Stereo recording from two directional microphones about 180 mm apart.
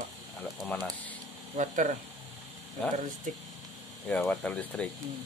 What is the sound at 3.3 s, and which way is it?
Speech, 45° right (ahead or behind).